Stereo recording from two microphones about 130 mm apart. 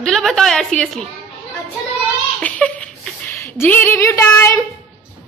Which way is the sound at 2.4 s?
10° left (ahead or behind).